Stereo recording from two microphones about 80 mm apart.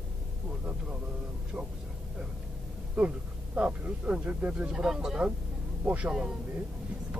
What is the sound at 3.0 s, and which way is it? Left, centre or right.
Speech, centre.